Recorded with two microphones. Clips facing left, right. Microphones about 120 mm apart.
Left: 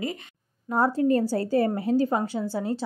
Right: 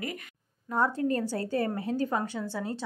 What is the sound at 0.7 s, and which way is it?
A woman's voice, 35° left (ahead or behind).